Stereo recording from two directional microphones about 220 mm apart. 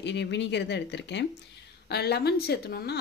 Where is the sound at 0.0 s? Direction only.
50° left (ahead or behind).